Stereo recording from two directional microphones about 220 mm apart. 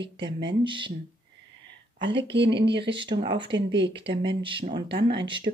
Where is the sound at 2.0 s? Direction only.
20° right (ahead or behind).